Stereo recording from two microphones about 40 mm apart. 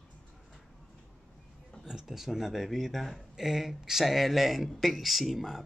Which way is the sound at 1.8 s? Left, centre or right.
Centre.